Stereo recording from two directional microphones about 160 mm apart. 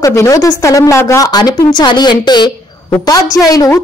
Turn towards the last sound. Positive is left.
turn(degrees=25)  # may be behind; listen again after turning